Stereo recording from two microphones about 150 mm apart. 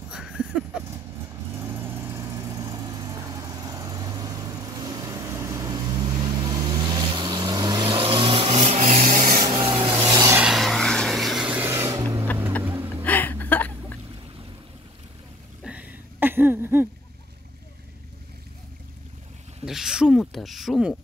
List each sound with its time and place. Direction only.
0.1 s a sound: 5° right (ahead or behind)
1.5 s vehicle: 15° right (ahead or behind); by 8.9 s 40° right (ahead or behind)
8.9 s rub: 65° right (ahead or behind)
9.5 s rub: 35° right (ahead or behind)
10.4 s vehicle: centre (ahead or behind); by 12.3 s 20° right (ahead or behind)
12.6 s music: 15° right (ahead or behind)
13.0 s a sound: 10° left (ahead or behind)
15.6 s a sound: 10° right (ahead or behind)
19.6 s speech: 5° right (ahead or behind)